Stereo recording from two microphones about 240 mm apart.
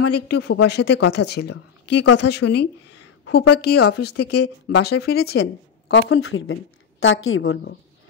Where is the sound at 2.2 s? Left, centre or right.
Left.